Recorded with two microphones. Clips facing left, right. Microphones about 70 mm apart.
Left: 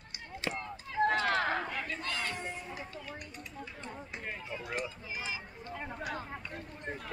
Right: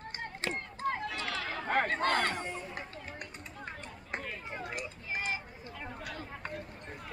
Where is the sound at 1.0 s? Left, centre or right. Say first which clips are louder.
Left 8 dB; left.